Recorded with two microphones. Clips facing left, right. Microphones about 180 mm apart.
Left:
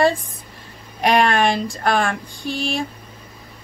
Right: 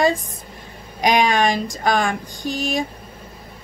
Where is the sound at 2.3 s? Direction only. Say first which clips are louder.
Right 1 dB; 30° left (ahead or behind).